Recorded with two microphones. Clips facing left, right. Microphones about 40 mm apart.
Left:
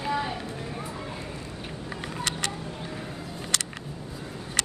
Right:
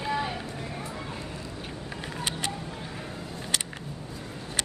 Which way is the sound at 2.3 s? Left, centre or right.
Left.